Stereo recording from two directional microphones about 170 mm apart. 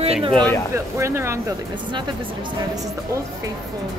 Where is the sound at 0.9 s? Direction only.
15° right (ahead or behind).